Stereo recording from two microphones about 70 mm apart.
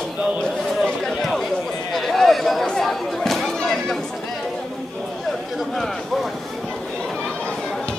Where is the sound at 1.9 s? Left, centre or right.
Centre.